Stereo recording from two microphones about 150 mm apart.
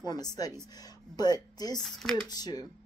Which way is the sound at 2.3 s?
25° left (ahead or behind).